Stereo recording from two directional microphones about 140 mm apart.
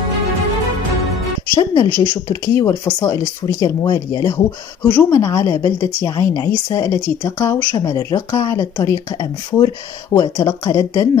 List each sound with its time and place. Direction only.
1.6 s speech: 25° left (ahead or behind)
4.8 s speech: 10° left (ahead or behind)
5.2 s speech: 25° left (ahead or behind)